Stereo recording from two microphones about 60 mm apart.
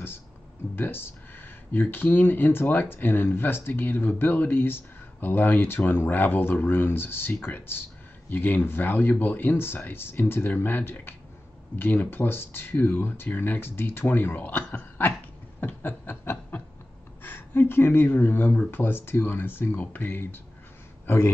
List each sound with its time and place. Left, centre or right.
0.7 s speech: left
15.6 s chuckle: left
17.2 s speech: left